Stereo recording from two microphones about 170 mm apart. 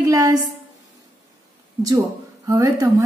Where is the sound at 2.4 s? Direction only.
20° right (ahead or behind).